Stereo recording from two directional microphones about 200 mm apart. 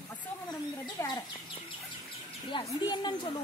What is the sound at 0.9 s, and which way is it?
Chicken, 20° left (ahead or behind).